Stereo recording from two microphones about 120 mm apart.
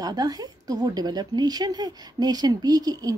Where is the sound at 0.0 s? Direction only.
30° right (ahead or behind).